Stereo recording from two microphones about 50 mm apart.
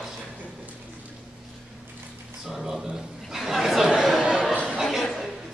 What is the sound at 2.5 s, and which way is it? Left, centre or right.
Chuckle, centre.